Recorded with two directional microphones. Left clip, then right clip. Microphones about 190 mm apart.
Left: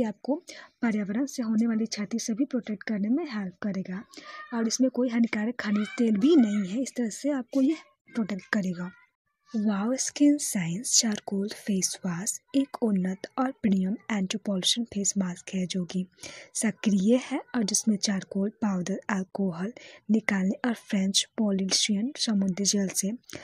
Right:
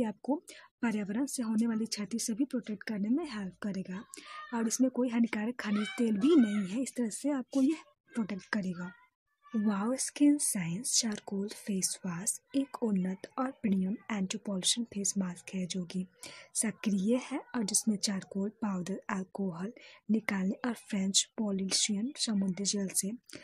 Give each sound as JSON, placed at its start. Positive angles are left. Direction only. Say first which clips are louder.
{"t": 0.0, "sound": "a woman's voice", "louder": "left 5 dB", "side_deg": 15}